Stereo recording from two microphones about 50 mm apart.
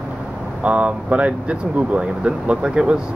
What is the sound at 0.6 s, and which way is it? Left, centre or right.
Speech, right.